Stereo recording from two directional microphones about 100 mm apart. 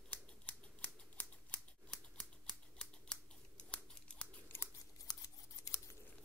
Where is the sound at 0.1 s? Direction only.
15° left (ahead or behind).